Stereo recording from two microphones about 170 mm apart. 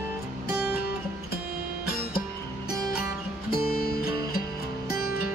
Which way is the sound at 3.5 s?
65° left (ahead or behind).